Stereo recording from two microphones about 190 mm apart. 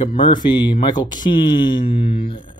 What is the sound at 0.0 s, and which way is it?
Speech, 25° left (ahead or behind).